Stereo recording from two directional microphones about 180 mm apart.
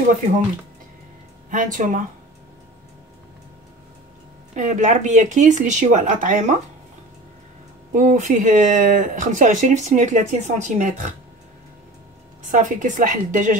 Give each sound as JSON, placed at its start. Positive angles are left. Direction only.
{"t": 1.5, "sound": "speech", "side_deg": -45}
{"t": 4.6, "sound": "speech", "side_deg": -40}
{"t": 7.9, "sound": "speech", "side_deg": -40}
{"t": 12.4, "sound": "speech", "side_deg": -45}